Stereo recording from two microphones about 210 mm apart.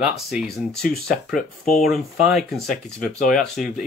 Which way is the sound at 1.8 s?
Centre (ahead or behind).